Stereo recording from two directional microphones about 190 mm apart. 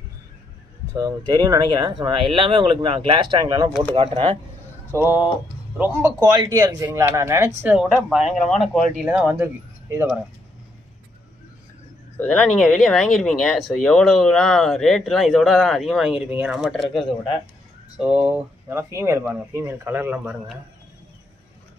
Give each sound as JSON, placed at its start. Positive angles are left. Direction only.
{"t": 0.9, "sound": "speech", "side_deg": -20}
{"t": 4.9, "sound": "speech", "side_deg": -10}
{"t": 7.7, "sound": "speech", "side_deg": 0}
{"t": 12.2, "sound": "speech", "side_deg": 5}